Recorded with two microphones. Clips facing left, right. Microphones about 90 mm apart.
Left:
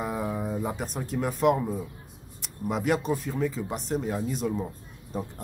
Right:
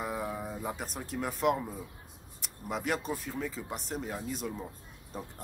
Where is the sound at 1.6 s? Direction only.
20° left (ahead or behind).